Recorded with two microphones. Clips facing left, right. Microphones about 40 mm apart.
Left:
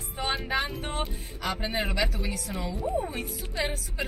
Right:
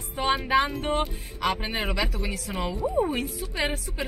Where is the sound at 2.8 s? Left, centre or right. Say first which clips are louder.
Right 5 dB; right.